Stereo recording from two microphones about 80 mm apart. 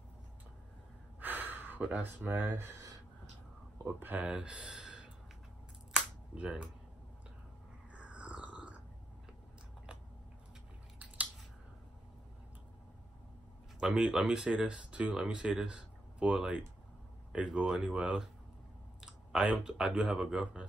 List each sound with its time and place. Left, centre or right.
1.2 s speech: right
3.7 s speech: right; by 5.1 s centre
5.9 s cap gun: centre
7.9 s grunt: centre
13.7 s speech: centre